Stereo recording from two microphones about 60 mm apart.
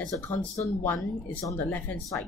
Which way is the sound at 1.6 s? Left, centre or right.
Left.